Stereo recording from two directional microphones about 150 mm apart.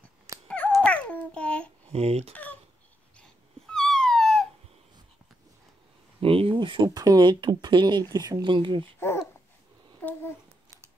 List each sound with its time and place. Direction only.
0.5 s babbling: 5° left (ahead or behind)
1.9 s speech: 45° right (ahead or behind)
2.3 s a sound: 10° left (ahead or behind)
3.2 s dog: 5° left (ahead or behind)
6.2 s speech: 35° right (ahead or behind)
10.0 s a sound: 15° left (ahead or behind)